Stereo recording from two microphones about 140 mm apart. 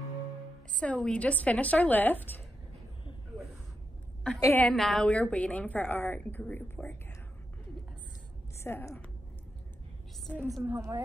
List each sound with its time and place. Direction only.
0.7 s a woman's voice: 10° left (ahead or behind)
4.4 s a woman's voice: 15° left (ahead or behind)
8.5 s a woman's voice: 15° left (ahead or behind)
10.6 s a woman's voice: 20° right (ahead or behind)